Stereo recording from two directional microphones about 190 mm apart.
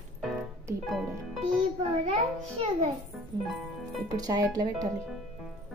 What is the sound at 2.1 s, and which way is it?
Speech, 35° right (ahead or behind).